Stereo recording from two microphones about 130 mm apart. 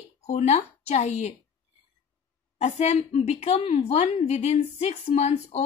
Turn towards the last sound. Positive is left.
turn(degrees=60)  # may be behind; listen again after turning